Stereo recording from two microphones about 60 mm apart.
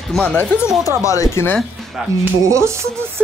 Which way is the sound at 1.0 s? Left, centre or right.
Left.